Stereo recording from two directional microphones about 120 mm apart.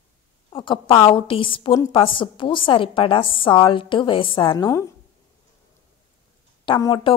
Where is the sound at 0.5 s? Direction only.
45° left (ahead or behind).